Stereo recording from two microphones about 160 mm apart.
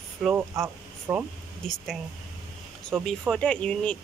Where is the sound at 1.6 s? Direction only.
5° left (ahead or behind).